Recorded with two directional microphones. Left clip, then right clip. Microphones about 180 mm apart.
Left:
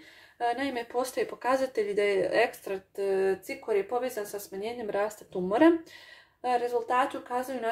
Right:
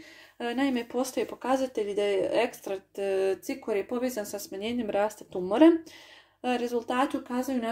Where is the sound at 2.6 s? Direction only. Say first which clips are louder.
Even; 30° right (ahead or behind).